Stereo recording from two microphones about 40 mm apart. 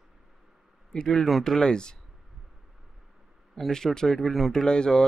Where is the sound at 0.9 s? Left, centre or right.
Centre.